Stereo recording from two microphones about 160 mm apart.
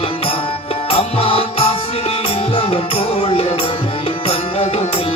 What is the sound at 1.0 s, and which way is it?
Music, 35° left (ahead or behind).